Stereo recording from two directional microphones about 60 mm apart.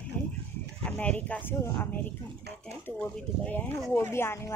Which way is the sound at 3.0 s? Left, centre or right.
Left.